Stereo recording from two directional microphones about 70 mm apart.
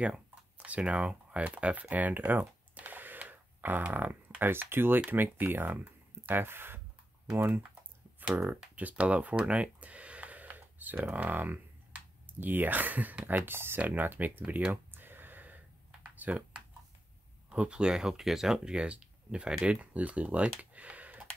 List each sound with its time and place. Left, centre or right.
0.0 s speech: centre; by 7.6 s right
8.2 s a sound: right
8.7 s speech: right
13.5 s a sound: right
17.5 s speech: centre
20.7 s computer keyboard: right